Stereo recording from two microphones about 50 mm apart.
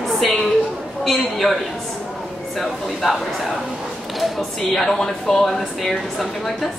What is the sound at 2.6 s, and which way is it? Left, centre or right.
Speech, centre.